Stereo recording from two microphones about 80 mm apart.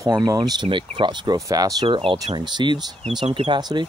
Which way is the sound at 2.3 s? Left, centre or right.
Right.